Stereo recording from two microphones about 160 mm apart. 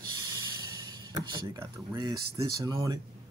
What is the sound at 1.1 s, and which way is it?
Speech, 20° right (ahead or behind).